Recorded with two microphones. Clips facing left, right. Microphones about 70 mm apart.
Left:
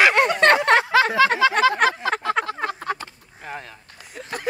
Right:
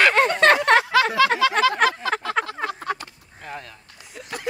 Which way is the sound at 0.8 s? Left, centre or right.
Left.